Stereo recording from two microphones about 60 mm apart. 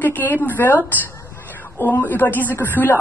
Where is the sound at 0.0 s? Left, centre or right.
Left.